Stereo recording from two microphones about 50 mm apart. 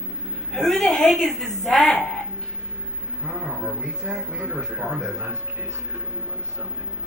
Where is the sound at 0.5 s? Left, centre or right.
Centre.